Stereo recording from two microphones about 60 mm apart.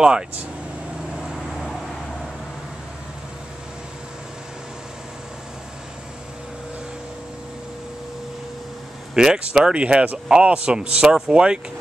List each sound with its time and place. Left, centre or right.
1.1 s vehicle: centre
9.1 s speech: centre